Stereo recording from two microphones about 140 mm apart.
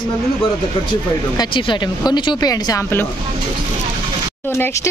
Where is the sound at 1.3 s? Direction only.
30° left (ahead or behind).